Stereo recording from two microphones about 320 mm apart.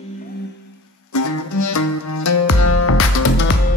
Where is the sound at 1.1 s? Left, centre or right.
Left.